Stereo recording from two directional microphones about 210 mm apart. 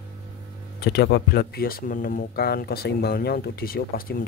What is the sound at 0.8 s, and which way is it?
Speech, 50° left (ahead or behind).